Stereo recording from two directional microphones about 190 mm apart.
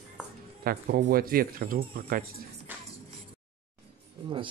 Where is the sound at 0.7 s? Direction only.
50° right (ahead or behind).